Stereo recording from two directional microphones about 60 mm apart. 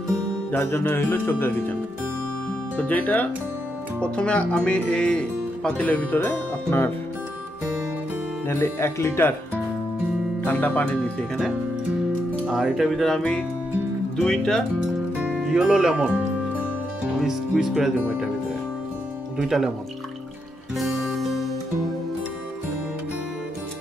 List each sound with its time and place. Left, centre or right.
0.6 s speech: left
2.8 s speech: left
4.0 s speech: centre
5.8 s speech: left
6.2 s music: left
8.5 s speech: left
10.4 s speech: left
12.4 s speech: centre
14.2 s speech: centre
15.3 s speech: centre
17.2 s speech: centre
19.3 s speech: centre
20.7 s music: centre